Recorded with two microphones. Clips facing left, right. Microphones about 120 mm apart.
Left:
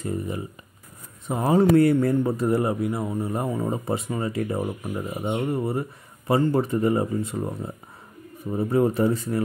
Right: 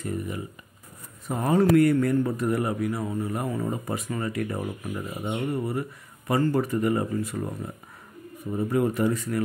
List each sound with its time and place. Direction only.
0.0 s speech: 25° left (ahead or behind)
1.4 s speech: 30° left (ahead or behind)